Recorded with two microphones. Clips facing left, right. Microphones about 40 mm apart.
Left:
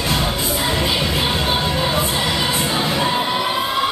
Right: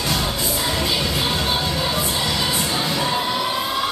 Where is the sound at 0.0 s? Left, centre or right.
Centre.